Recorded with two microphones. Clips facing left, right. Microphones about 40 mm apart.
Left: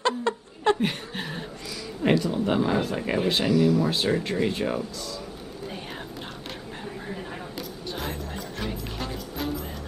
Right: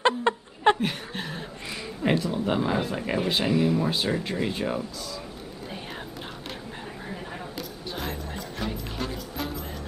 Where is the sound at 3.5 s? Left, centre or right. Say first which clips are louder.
Left 3 dB; right.